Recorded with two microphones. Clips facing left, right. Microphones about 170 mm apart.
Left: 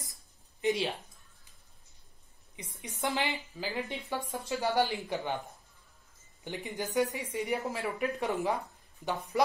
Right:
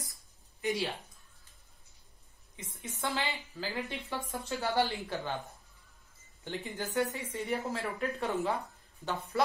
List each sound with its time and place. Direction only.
0.6 s speech: 20° left (ahead or behind)
2.7 s a woman's voice: 15° left (ahead or behind)
6.4 s a woman's voice: 15° left (ahead or behind)